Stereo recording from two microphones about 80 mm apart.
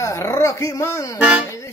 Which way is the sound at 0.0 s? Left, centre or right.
Left.